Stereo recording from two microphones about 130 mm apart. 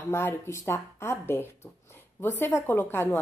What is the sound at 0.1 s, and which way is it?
A woman's voice, 20° left (ahead or behind).